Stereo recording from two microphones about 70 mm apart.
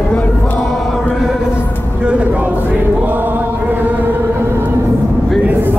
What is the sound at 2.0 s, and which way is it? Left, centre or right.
Chant, centre.